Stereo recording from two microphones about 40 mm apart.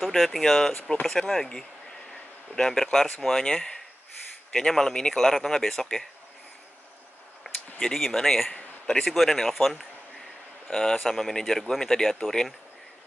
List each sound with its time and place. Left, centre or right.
0.1 s speech: centre
7.9 s speech: centre
9.5 s speech: centre
10.7 s speech: centre